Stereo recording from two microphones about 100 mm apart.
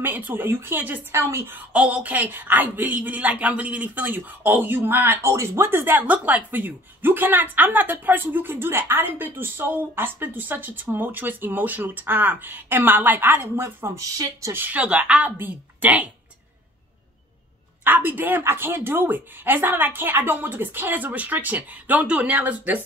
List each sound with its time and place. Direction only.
0.0 s a woman's voice: 20° right (ahead or behind)
14.6 s a woman's voice: 15° right (ahead or behind)
17.8 s a woman's voice: 20° right (ahead or behind)